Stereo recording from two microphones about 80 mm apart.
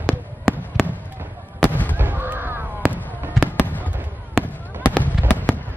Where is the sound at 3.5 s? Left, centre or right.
Left.